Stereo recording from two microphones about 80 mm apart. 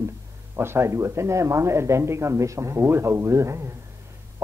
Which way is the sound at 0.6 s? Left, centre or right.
Right.